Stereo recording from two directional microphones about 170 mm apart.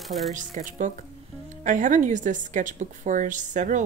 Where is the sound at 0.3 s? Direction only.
50° right (ahead or behind).